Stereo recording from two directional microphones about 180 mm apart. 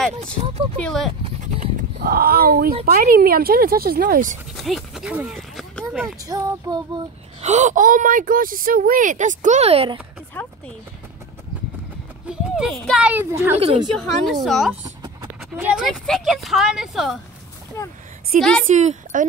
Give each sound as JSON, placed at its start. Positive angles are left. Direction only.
{"t": 0.2, "sound": "speech", "side_deg": -35}
{"t": 0.8, "sound": "speech", "side_deg": 0}
{"t": 1.2, "sound": "speech", "side_deg": -40}
{"t": 4.6, "sound": "speech", "side_deg": 0}
{"t": 6.2, "sound": "speech", "side_deg": -20}
{"t": 7.4, "sound": "speech", "side_deg": -40}
{"t": 10.4, "sound": "a sound", "side_deg": 10}
{"t": 12.3, "sound": "speech", "side_deg": 0}
{"t": 13.6, "sound": "speech", "side_deg": -30}
{"t": 13.9, "sound": "speech", "side_deg": 0}
{"t": 18.3, "sound": "speech", "side_deg": -45}